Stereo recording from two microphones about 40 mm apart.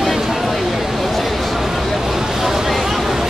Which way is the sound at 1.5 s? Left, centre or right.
Centre.